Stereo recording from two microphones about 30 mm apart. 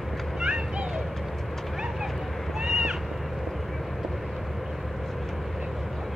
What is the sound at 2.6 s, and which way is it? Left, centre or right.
Cat, right.